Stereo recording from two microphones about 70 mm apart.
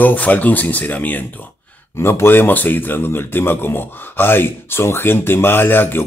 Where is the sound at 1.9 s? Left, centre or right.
Left.